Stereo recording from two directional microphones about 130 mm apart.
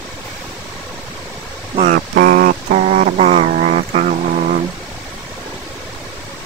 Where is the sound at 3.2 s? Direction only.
55° right (ahead or behind); by 4.6 s 75° right (ahead or behind).